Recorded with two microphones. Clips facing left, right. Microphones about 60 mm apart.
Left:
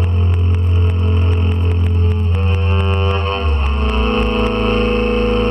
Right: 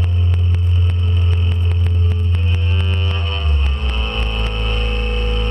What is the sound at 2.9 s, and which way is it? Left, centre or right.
Music, left.